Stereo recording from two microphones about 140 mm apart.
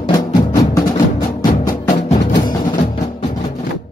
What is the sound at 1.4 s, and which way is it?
Music, 85° left.